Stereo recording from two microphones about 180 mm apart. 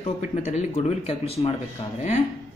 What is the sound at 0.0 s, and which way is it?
Speech, 40° left (ahead or behind).